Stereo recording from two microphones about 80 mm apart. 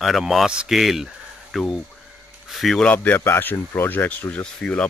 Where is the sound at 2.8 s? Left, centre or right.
Centre.